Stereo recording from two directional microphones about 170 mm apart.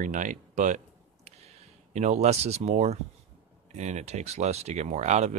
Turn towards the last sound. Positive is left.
turn(degrees=-40)  # may be behind; listen again after turning